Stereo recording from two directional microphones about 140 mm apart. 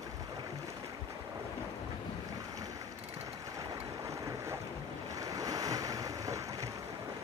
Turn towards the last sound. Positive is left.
turn(degrees=-25)  # may be behind; listen again after turning